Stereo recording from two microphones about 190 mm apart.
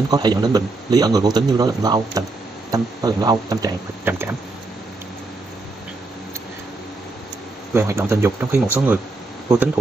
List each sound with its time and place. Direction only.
0.1 s speech: 20° right (ahead or behind)
4.0 s speech: 10° right (ahead or behind)
7.7 s speech: 10° right (ahead or behind)